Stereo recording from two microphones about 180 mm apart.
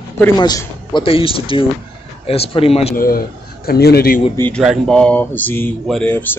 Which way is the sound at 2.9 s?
55° left (ahead or behind).